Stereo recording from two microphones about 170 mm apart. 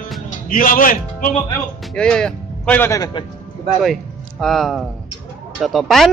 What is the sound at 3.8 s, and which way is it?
Speech, centre (ahead or behind).